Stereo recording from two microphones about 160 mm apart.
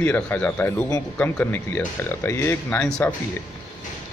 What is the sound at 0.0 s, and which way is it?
Speech, 10° left (ahead or behind).